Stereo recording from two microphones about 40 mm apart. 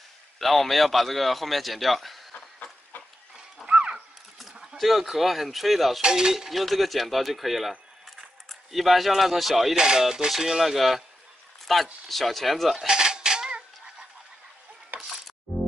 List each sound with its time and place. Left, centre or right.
0.4 s a man's voice: centre
3.6 s dog: right
4.4 s a sound: centre
5.1 s a man's voice: centre
6.0 s speech: centre
6.5 s a man's voice: centre
9.8 s a man's voice: centre
12.7 s dishes: centre